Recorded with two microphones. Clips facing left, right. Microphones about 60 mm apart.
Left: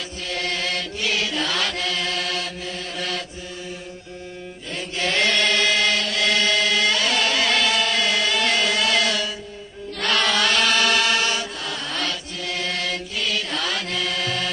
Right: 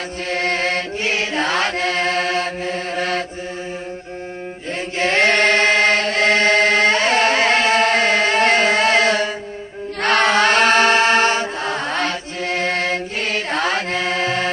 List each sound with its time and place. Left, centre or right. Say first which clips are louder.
0.3 s chant: right 6 dB; right
4.9 s chant: right 6 dB; right